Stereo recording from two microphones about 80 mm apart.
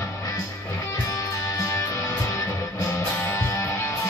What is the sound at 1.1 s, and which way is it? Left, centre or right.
Music, left.